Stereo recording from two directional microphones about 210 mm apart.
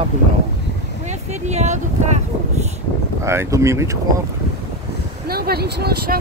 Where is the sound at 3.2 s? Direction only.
15° right (ahead or behind).